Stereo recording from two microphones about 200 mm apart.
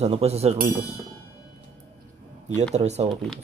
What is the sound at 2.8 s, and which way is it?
Speech, 30° right (ahead or behind).